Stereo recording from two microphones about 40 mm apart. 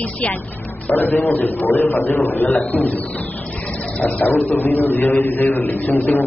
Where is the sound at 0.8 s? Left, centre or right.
Left.